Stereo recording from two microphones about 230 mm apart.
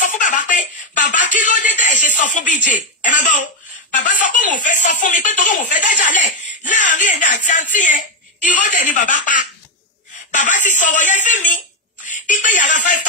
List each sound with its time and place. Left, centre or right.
0.0 s music: left
3.9 s speech: left